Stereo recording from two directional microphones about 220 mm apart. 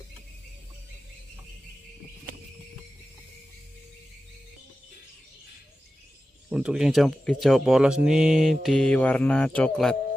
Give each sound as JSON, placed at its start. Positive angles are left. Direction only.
{"t": 6.5, "sound": "speech", "side_deg": -5}